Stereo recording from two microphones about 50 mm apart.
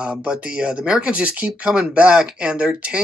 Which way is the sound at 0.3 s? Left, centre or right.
Centre.